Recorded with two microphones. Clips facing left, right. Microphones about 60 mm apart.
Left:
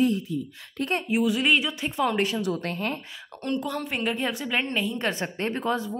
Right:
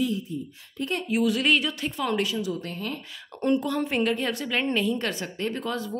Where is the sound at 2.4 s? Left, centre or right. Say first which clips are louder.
Left 2 dB; left.